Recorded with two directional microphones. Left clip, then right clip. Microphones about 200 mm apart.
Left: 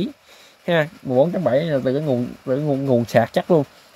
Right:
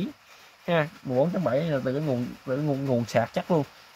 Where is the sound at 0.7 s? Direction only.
25° left (ahead or behind).